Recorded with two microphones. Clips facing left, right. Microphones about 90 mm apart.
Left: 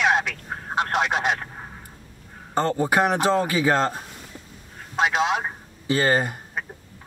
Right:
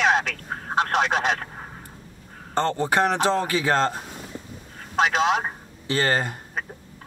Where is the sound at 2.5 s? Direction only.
10° left (ahead or behind).